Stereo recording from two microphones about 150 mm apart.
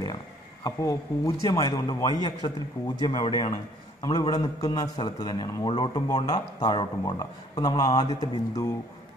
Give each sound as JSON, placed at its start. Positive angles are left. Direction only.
{"t": 0.7, "sound": "speech", "side_deg": 20}